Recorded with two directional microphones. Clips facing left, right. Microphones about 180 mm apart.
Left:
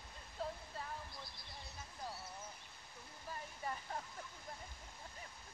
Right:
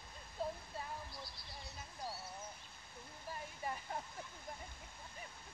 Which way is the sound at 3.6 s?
15° right (ahead or behind).